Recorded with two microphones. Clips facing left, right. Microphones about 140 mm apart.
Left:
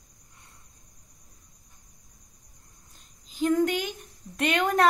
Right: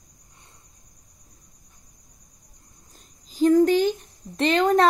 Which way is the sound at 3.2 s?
35° right (ahead or behind).